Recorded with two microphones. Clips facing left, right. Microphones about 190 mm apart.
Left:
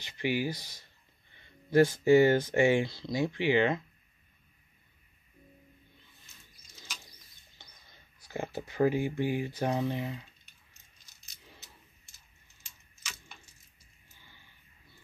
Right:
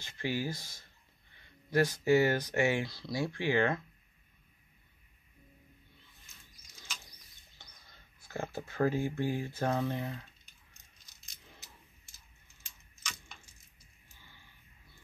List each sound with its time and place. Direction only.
0.0 s speech: 15° left (ahead or behind)
8.3 s speech: 15° left (ahead or behind)